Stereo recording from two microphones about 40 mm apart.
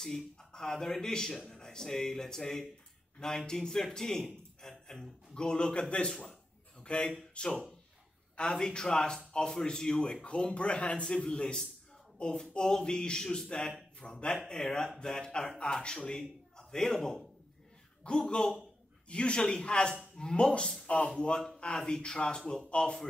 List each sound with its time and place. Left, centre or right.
0.0 s a man's voice: centre
6.8 s a sound: left
7.4 s a man's voice: left
8.5 s a man's voice: centre
16.2 s a man's voice: centre
19.0 s a man's voice: left